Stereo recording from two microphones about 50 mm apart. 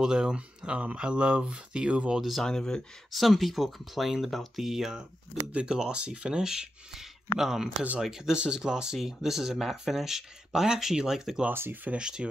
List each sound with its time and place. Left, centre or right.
0.0 s speech: centre
2.1 s speech: centre
2.4 s speech: centre
3.1 s speech: centre
5.5 s speech: centre
11.7 s speech: right
12.0 s speech: centre